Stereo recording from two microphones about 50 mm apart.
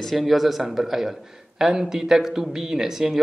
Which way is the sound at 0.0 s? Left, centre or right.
Centre.